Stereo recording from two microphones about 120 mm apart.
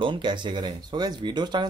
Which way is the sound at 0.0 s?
40° right (ahead or behind).